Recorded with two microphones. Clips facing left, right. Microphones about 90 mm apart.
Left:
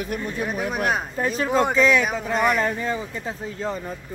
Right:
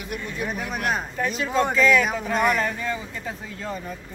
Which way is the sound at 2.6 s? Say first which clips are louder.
Left 3 dB; 25° left (ahead or behind).